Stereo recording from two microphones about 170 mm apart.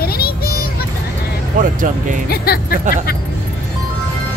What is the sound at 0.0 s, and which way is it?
Music, 65° left (ahead or behind).